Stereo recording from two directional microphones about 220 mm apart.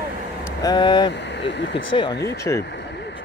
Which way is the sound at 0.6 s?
20° left (ahead or behind).